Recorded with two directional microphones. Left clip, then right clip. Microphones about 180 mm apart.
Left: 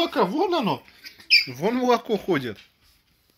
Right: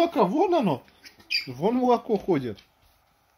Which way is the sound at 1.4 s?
10° right (ahead or behind).